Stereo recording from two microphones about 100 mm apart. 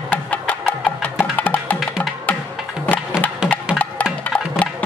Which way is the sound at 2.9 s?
15° left (ahead or behind).